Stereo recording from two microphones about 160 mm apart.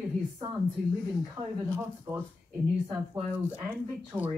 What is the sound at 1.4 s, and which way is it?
Speech, 15° right (ahead or behind).